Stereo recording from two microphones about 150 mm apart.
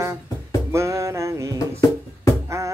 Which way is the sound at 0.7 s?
20° right (ahead or behind).